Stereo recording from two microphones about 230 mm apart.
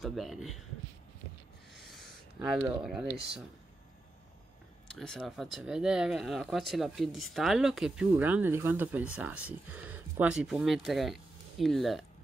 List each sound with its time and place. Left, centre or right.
0.0 s speech: centre
2.3 s speech: centre
4.8 s speech: centre